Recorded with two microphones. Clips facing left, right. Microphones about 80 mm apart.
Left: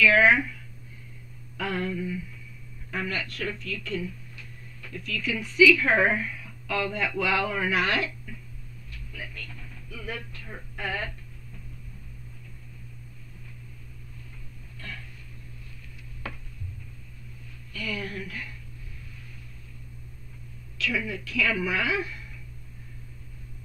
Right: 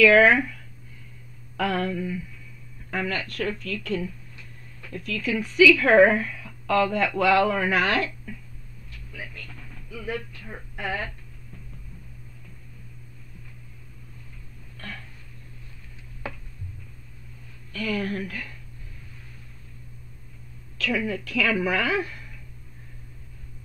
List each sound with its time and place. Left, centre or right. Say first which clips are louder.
0.0 s a woman's voice: right 4 dB; right
1.6 s a sound: right 4 dB; right
2.9 s a woman's voice: right 3 dB; right
9.1 s speech: right 1 dB; centre
17.7 s a woman's voice: right 6 dB; right
20.7 s a woman's voice: right 4 dB; right